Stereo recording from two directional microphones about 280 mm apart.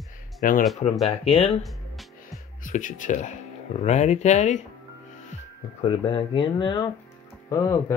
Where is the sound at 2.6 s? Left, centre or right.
Left.